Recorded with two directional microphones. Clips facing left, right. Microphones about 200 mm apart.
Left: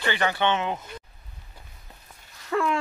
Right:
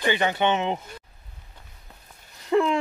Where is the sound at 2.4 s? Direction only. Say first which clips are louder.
Right 4 dB; 20° right (ahead or behind).